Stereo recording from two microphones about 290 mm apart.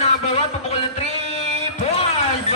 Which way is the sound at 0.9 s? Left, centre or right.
Left.